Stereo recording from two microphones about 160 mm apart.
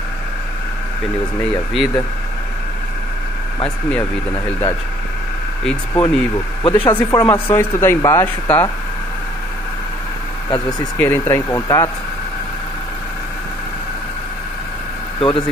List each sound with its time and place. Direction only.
1.4 s speech: 5° left (ahead or behind)
3.6 s speech: 10° left (ahead or behind)
11.0 s speech: 15° left (ahead or behind)
15.1 s speech: 35° left (ahead or behind)